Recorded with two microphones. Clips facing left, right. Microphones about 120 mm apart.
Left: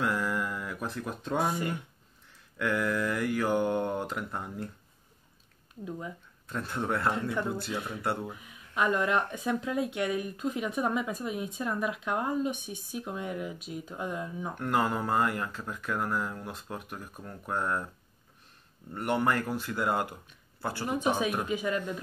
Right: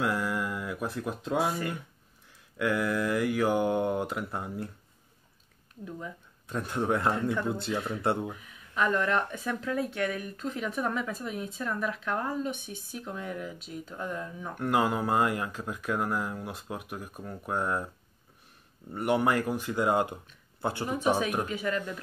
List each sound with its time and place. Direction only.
0.0 s a sound: 5° right (ahead or behind)
2.6 s speech: 10° right (ahead or behind)
5.9 s speech: 10° left (ahead or behind)
6.4 s speech: 15° right (ahead or behind)
8.3 s speech: 10° left (ahead or behind)
14.5 s speech: 10° right (ahead or behind)
18.9 s speech: 10° right (ahead or behind)
21.5 s speech: 15° left (ahead or behind)